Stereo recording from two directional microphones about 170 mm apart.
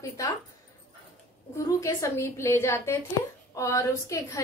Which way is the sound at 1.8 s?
20° left (ahead or behind).